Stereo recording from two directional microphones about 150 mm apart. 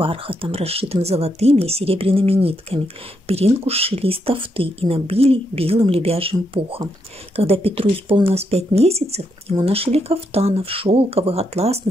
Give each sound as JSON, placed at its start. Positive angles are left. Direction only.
{"t": 0.0, "sound": "speech", "side_deg": -35}